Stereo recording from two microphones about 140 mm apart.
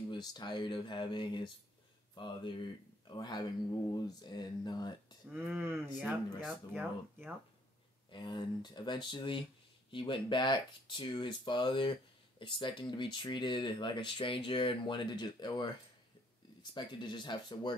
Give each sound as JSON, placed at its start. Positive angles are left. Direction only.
{"t": 0.1, "sound": "speech", "side_deg": 30}
{"t": 5.5, "sound": "speech", "side_deg": -15}
{"t": 8.1, "sound": "speech", "side_deg": 35}
{"t": 16.7, "sound": "speech", "side_deg": 35}